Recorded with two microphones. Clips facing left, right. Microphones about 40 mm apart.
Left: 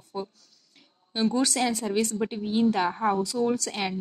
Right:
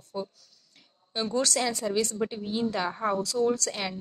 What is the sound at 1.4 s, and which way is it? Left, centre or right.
A woman's voice, left.